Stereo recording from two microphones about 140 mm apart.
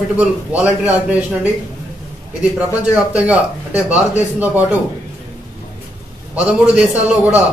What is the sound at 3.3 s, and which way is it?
Speech, 10° right (ahead or behind).